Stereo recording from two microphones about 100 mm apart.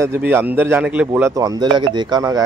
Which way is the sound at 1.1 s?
30° right (ahead or behind).